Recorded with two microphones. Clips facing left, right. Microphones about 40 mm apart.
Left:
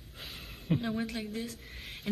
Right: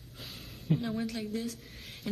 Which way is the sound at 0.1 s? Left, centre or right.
Left.